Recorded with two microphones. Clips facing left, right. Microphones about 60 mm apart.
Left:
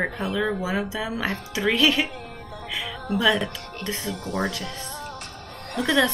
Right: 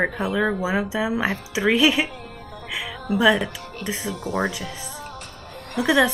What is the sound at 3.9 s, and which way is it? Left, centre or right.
Speech, centre.